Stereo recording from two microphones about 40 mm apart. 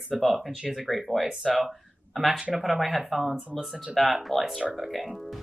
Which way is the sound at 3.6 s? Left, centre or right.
Centre.